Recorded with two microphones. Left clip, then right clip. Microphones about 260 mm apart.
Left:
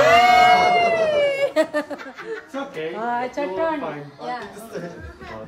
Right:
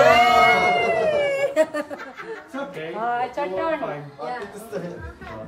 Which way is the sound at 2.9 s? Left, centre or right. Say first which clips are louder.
Right 1 dB; left.